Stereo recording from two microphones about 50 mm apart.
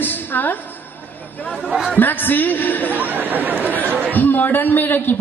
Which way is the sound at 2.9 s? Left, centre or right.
Right.